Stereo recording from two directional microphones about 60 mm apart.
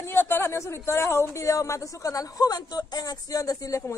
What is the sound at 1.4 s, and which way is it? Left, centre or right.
A woman's voice, left.